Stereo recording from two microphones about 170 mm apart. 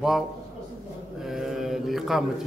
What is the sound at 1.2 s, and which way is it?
A man's voice, centre (ahead or behind).